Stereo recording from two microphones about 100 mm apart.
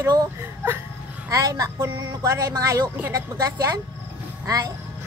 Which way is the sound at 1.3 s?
35° right (ahead or behind).